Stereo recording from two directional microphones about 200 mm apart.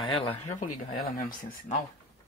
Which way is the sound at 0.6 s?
45° left (ahead or behind).